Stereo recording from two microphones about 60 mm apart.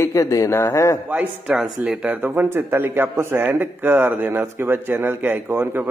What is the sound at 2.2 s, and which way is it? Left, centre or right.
Speech, right.